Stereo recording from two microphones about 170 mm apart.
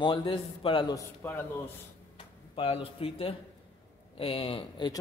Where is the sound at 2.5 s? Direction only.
35° left (ahead or behind).